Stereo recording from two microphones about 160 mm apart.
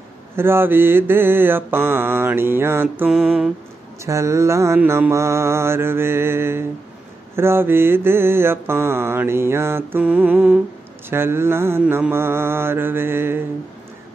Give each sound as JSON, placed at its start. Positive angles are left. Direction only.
{"t": 0.4, "sound": "mantra", "side_deg": -15}
{"t": 3.2, "sound": "a sound", "side_deg": -5}
{"t": 4.0, "sound": "mantra", "side_deg": -20}